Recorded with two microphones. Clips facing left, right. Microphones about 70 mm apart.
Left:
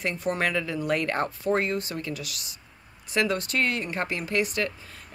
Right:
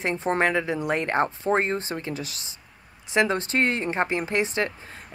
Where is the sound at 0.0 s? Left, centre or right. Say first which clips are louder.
Right 4 dB; right.